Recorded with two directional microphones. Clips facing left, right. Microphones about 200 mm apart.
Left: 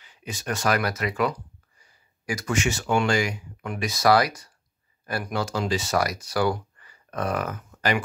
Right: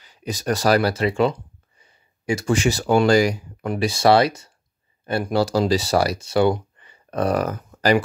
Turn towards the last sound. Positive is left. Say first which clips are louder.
# right 7 dB
turn(degrees=-35)  # may be behind; listen again after turning